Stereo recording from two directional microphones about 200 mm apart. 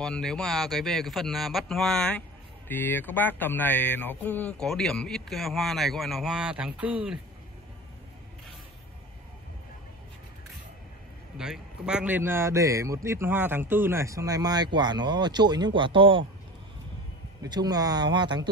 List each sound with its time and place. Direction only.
0.0 s speech: 5° left (ahead or behind)
11.3 s a man's voice: 5° right (ahead or behind); by 16.3 s 25° right (ahead or behind)
17.4 s speech: 20° right (ahead or behind)